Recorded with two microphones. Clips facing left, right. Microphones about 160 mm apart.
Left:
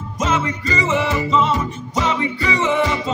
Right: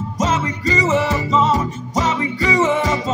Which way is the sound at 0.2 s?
40° right (ahead or behind).